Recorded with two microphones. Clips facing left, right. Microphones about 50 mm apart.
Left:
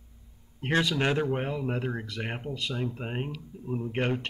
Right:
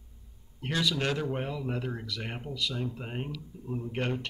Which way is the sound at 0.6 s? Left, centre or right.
Left.